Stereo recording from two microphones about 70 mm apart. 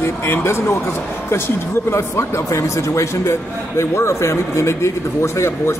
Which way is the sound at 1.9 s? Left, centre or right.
Left.